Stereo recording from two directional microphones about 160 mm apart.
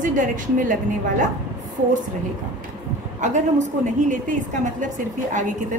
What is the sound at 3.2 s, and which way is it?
A woman's voice, 50° right (ahead or behind).